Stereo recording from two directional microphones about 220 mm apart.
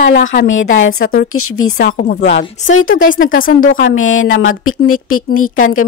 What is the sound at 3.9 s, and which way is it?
Speech, 60° left (ahead or behind).